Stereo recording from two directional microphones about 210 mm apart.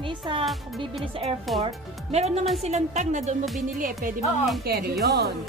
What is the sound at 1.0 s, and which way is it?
A woman's voice, 25° right (ahead or behind).